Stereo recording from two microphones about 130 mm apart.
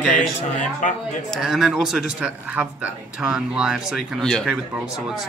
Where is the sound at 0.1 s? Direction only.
75° left (ahead or behind).